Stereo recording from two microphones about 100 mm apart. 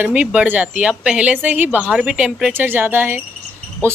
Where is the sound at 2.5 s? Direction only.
20° right (ahead or behind).